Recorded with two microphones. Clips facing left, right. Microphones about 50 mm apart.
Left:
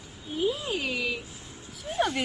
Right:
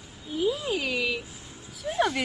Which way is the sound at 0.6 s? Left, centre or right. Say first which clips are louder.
Right 2 dB; right.